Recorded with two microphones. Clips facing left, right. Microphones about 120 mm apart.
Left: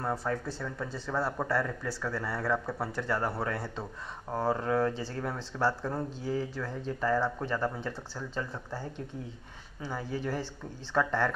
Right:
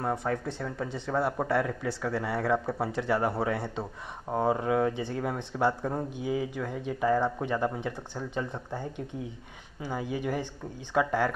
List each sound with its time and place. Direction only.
0.0 s speech: 15° right (ahead or behind)